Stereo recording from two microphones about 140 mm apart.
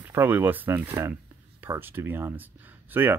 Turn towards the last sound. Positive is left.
turn(degrees=-15)  # may be behind; listen again after turning